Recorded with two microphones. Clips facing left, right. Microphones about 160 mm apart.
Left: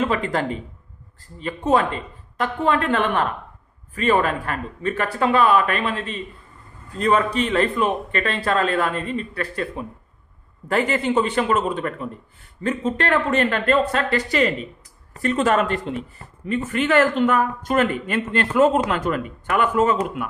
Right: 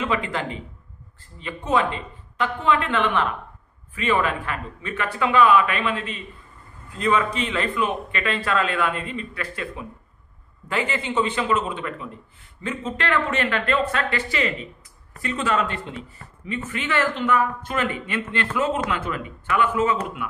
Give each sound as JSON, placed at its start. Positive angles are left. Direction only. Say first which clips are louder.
{"t": 0.0, "sound": "a man's voice", "louder": "left 4 dB", "side_deg": 40}